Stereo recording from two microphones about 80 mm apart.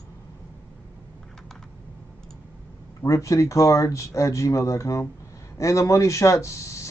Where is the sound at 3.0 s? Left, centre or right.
Left.